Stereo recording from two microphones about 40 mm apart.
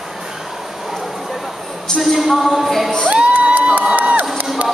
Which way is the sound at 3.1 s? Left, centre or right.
Right.